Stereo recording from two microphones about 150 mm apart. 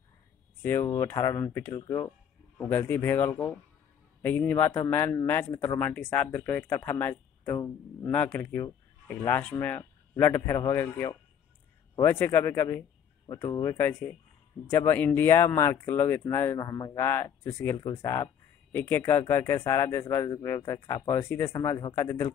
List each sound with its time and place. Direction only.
0.6 s speech: 15° left (ahead or behind)